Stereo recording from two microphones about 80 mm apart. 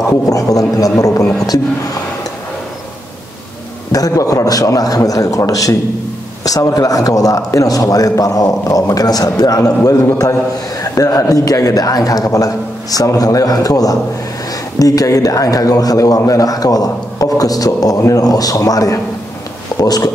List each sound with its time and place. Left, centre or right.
0.3 s a man's voice: left
3.9 s a man's voice: left